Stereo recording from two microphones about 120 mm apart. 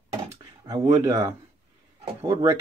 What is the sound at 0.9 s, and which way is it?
Speech, 30° right (ahead or behind).